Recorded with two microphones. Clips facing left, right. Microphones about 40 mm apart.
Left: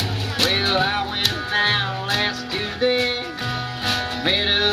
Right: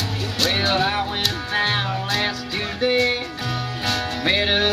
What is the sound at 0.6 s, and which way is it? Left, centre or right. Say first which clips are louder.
Music: right 2 dB; centre.